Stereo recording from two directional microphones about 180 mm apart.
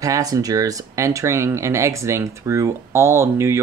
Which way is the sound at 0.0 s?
20° right (ahead or behind).